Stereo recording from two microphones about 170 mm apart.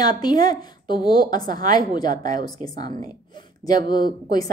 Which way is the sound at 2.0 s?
55° right (ahead or behind).